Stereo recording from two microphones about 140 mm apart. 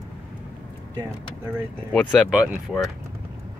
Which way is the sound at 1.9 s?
5° left (ahead or behind).